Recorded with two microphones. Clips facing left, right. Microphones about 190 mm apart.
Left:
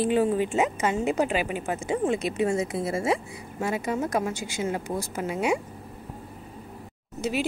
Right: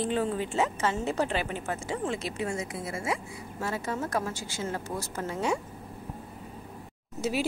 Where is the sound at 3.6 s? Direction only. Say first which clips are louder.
Left 5 dB; 15° left (ahead or behind).